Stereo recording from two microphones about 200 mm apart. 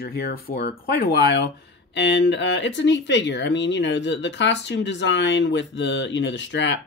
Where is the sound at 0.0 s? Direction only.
50° left (ahead or behind).